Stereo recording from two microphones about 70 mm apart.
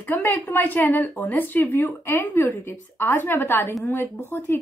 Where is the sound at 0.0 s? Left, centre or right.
Left.